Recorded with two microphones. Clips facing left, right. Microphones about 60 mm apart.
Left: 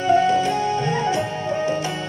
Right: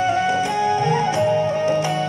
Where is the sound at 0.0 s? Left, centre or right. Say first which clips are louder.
Left 2 dB; right.